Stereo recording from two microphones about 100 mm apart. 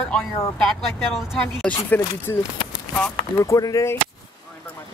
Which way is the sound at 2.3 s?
30° left (ahead or behind).